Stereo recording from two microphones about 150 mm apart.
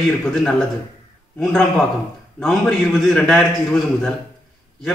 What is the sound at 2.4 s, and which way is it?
A man's voice, 5° left (ahead or behind).